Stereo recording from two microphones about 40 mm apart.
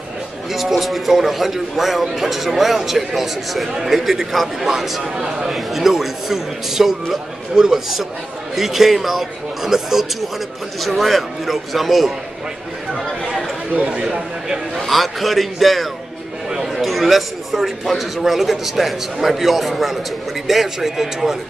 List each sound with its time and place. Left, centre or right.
0.5 s a man's voice: centre
13.7 s speech: right
14.0 s a man's voice: centre
14.9 s a man's voice: centre
16.4 s chatter: centre
16.7 s a man's voice: centre